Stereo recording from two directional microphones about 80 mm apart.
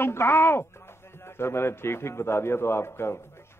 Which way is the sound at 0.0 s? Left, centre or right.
Left.